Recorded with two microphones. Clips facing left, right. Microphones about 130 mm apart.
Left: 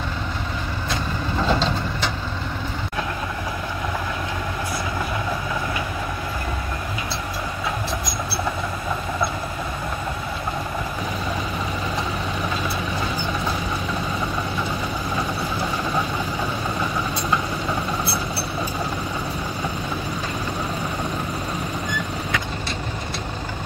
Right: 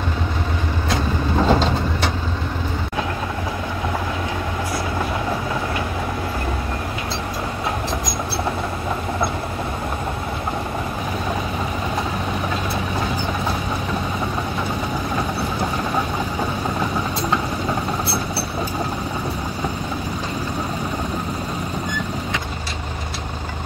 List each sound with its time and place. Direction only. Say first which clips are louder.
1.4 s vehicle: right 4 dB; 40° right (ahead or behind)